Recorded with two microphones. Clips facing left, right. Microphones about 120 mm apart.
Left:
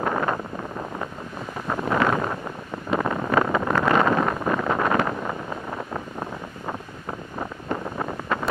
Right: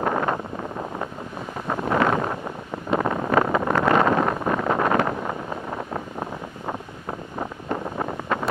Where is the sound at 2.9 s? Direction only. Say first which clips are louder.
Right 1 dB; 30° right (ahead or behind).